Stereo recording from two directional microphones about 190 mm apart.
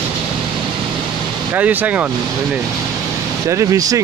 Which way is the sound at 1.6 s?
10° right (ahead or behind).